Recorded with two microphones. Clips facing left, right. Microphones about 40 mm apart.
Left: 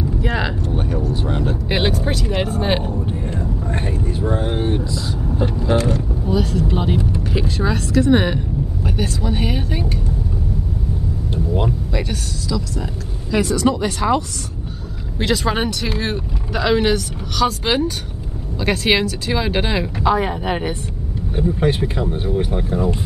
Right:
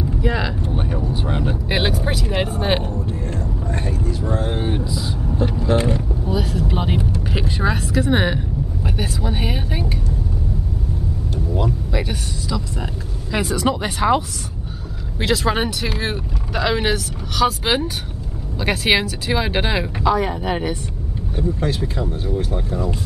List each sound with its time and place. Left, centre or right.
0.2 s vehicle: centre
0.7 s vehicle: centre
1.1 s speech: centre
2.9 s speech: centre
4.6 s speech: centre
5.8 s speech: centre
6.2 s speech: centre
11.9 s speech: centre
15.1 s speech: centre
20.0 s speech: centre
21.4 s speech: left